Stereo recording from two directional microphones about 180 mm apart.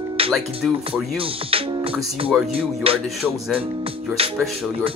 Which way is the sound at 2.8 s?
30° right (ahead or behind).